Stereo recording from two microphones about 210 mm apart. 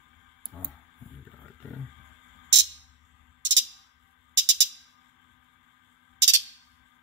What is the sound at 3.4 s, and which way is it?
Music, 60° right (ahead or behind).